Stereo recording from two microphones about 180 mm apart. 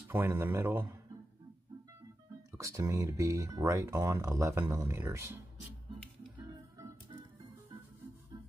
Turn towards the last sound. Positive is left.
turn(degrees=-20)  # may be behind; listen again after turning